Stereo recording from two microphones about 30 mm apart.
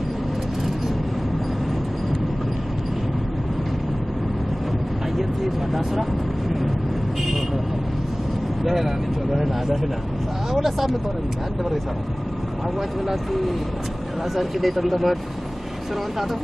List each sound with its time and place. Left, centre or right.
5.1 s vehicle: centre
8.6 s speech: centre
14.3 s speech: centre